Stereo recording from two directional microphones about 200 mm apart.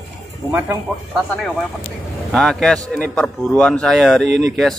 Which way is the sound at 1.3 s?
Centre (ahead or behind).